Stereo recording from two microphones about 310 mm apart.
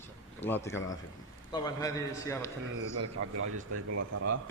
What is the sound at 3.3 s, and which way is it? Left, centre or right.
A man's voice, right.